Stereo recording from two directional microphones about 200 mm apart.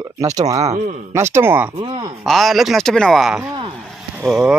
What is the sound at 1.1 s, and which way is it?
Speech, 15° right (ahead or behind).